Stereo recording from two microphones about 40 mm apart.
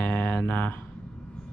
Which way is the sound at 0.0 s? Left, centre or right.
Left.